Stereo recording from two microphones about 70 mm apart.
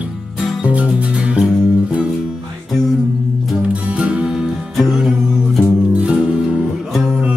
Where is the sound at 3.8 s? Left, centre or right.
Centre.